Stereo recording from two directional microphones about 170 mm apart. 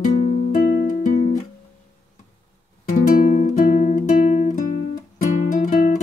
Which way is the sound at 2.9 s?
50° left (ahead or behind).